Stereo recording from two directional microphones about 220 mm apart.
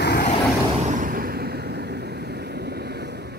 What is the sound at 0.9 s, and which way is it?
Vehicle, 35° right (ahead or behind).